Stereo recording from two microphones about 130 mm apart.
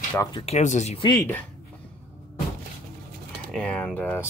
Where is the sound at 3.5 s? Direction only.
10° left (ahead or behind).